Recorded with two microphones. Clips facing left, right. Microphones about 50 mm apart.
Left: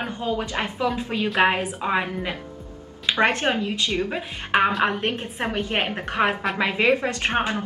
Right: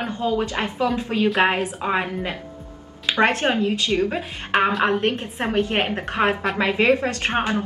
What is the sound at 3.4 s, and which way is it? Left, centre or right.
Speech, right.